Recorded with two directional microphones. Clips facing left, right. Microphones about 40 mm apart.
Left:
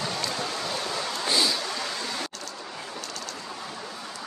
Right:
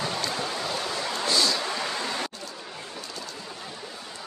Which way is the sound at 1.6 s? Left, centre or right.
Right.